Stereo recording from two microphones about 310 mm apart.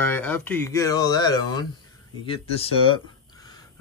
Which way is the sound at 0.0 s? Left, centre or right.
Centre.